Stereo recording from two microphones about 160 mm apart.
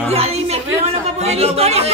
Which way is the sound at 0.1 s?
40° right (ahead or behind).